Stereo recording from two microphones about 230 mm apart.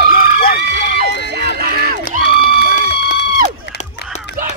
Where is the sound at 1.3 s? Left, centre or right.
Right.